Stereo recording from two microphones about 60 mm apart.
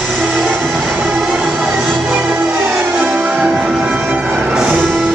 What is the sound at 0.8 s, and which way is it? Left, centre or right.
Music, centre.